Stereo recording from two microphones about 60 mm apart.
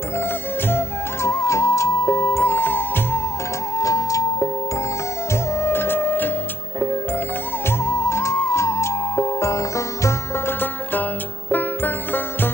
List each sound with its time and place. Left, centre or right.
0.7 s music: left
3.7 s music: left
5.3 s music: left
7.8 s music: left
10.4 s music: left